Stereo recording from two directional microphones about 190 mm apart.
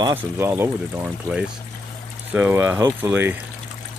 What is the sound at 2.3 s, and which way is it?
Speech, 10° right (ahead or behind).